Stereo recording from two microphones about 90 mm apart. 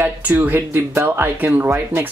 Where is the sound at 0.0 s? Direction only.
20° right (ahead or behind).